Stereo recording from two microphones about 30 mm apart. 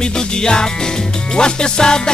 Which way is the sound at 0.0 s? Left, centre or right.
Left.